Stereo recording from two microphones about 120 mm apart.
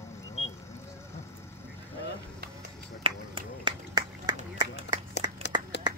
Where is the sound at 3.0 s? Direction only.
45° right (ahead or behind).